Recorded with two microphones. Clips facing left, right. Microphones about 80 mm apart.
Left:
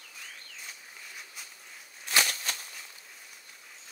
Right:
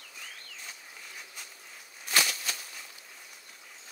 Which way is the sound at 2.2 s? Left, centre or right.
Left.